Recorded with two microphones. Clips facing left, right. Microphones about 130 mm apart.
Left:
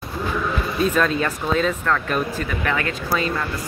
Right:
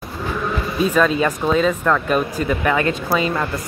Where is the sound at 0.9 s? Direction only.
5° right (ahead or behind).